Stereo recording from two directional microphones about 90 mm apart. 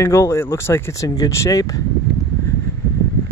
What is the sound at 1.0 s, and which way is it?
Speech, 45° left (ahead or behind).